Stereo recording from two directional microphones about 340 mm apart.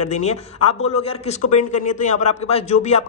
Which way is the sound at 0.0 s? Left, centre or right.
Centre.